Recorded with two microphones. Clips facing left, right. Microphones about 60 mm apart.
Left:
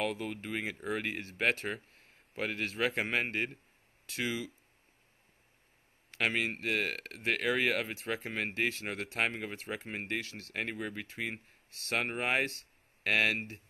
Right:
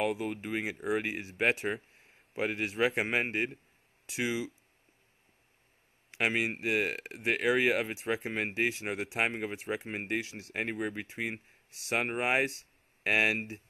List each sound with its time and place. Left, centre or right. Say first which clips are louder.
0.0 s speech: right 3 dB; centre
6.1 s speech: right 2 dB; centre